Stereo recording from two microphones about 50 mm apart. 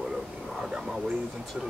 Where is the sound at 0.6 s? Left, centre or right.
Centre.